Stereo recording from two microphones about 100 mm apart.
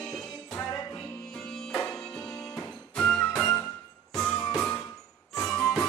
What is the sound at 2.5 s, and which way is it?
Music, 10° left (ahead or behind).